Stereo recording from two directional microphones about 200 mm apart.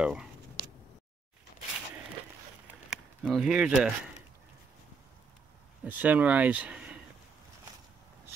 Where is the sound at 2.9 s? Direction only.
Centre (ahead or behind).